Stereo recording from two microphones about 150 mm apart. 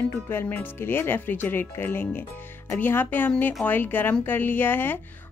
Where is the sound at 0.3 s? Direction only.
15° left (ahead or behind).